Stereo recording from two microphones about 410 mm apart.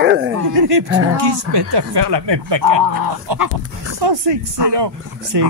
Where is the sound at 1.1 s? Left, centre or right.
Right.